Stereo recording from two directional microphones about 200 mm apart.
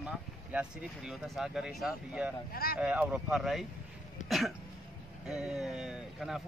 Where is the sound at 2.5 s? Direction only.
50° left (ahead or behind).